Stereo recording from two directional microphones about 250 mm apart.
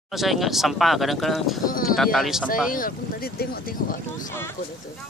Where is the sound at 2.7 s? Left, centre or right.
Left.